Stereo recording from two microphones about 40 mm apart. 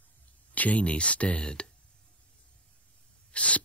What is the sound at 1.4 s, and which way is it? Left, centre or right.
Speech, centre.